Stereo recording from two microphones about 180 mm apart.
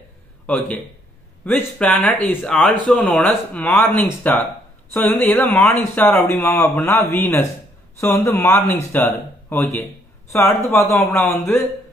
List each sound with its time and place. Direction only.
1.4 s speech: 10° left (ahead or behind)